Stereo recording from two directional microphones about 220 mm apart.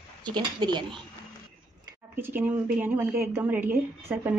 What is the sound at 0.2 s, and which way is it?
Speech, 20° right (ahead or behind).